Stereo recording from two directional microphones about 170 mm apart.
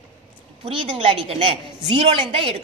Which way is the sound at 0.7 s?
35° right (ahead or behind).